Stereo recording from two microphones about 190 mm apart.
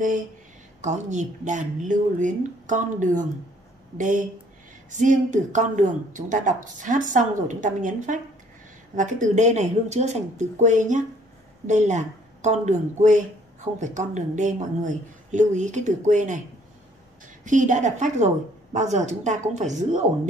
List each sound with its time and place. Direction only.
0.7 s speech: 40° right (ahead or behind)
4.9 s speech: 40° right (ahead or behind)
17.5 s speech: 40° right (ahead or behind)